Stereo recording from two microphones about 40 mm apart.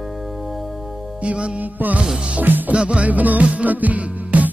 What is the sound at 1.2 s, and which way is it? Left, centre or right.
Music, right.